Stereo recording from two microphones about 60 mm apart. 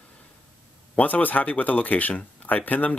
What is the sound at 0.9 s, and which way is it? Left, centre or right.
Speech, left.